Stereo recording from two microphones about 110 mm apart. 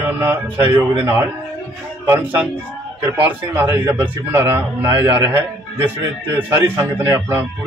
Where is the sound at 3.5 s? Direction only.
20° right (ahead or behind).